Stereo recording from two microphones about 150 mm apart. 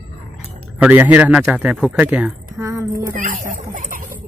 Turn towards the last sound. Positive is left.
turn(degrees=-70)  # may be behind; listen again after turning